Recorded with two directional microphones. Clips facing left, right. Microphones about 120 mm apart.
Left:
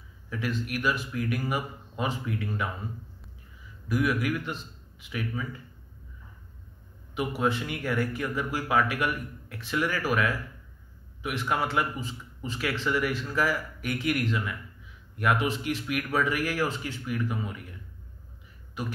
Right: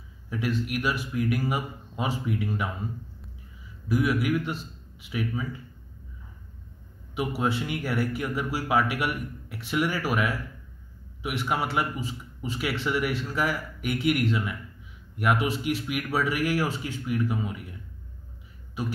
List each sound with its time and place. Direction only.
0.3 s speech: 15° right (ahead or behind)
3.9 s speech: 5° right (ahead or behind)
7.2 s speech: 5° right (ahead or behind)